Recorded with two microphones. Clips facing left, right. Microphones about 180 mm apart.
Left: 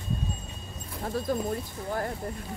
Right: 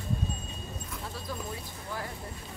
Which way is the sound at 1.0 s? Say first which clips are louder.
Left 12 dB; 50° left (ahead or behind).